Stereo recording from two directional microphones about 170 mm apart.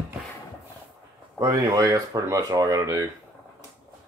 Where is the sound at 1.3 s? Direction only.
20° right (ahead or behind).